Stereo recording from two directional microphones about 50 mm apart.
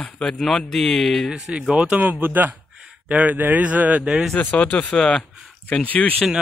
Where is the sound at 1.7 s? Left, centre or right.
Centre.